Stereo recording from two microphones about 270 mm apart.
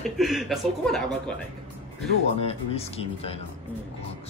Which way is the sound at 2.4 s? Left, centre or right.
Left.